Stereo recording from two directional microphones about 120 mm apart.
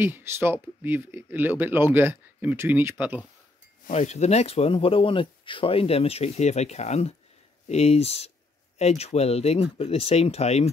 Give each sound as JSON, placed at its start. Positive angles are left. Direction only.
{"t": 0.0, "sound": "speech", "side_deg": -20}
{"t": 3.8, "sound": "speech", "side_deg": 80}